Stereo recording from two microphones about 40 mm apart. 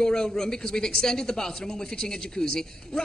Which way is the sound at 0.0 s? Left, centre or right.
Centre.